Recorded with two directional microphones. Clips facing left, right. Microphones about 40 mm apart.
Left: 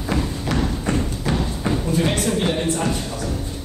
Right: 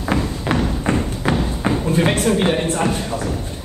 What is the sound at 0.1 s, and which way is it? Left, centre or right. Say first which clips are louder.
Thump: right 3 dB; right.